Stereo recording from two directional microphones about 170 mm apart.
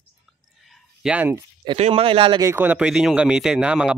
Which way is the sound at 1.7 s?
35° right (ahead or behind).